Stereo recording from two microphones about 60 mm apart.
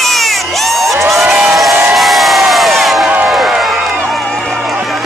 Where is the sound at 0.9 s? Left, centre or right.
Right.